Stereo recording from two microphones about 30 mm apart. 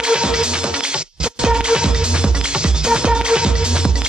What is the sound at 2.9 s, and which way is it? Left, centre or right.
Music, right.